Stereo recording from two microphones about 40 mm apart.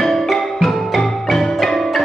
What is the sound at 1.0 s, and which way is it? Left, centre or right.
Music, centre.